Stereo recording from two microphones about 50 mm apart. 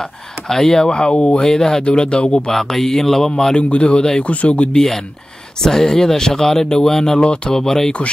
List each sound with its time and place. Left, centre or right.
0.0 s speech: centre
0.8 s speech: centre
1.9 s speech: left
2.5 s speech: centre; by 4.6 s left
4.7 s speech: centre
7.2 s speech: left
7.5 s speech: centre